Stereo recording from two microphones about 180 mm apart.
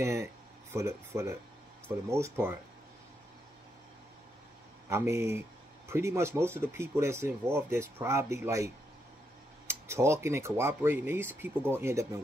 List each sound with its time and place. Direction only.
0.0 s speech: 15° right (ahead or behind)
4.8 s speech: 15° right (ahead or behind)